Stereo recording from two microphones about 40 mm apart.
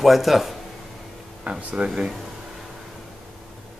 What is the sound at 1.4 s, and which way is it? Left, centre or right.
Speech, right.